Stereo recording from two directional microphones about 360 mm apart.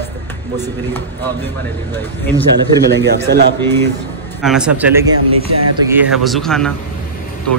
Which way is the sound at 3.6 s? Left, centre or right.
Centre.